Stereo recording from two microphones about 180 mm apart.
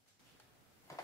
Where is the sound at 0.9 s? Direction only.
15° left (ahead or behind).